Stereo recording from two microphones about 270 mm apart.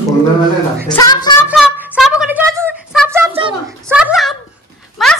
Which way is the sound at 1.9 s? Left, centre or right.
Centre.